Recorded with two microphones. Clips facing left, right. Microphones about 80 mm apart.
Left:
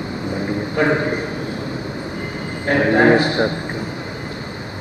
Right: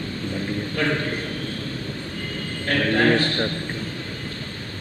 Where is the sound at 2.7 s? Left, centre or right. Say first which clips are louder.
Left 6 dB; left.